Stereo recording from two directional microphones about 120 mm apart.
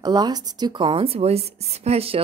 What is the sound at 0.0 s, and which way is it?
A woman's voice, 35° right (ahead or behind).